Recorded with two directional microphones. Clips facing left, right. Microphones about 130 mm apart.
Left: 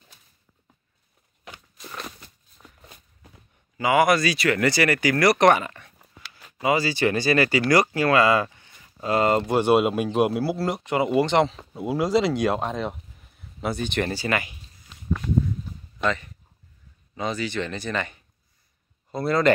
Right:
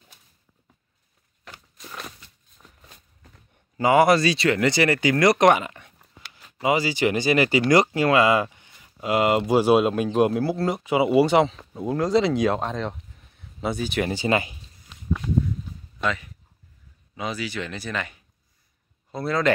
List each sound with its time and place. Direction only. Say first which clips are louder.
1.4 s walk: left 2 dB; 10° left (ahead or behind)
3.2 s a sound: left 2 dB; 10° left (ahead or behind)
3.7 s speech: right 2 dB; 35° right (ahead or behind); by 14.1 s 5° right (ahead or behind)
14.1 s speech: right 3 dB; 25° right (ahead or behind)
16.0 s speech: left 1 dB; 5° right (ahead or behind)